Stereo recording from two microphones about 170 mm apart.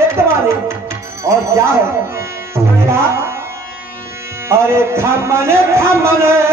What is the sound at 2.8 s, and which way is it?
Music, 15° right (ahead or behind).